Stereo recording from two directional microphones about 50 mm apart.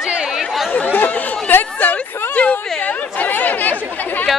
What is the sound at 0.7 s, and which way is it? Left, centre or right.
Chatter, left.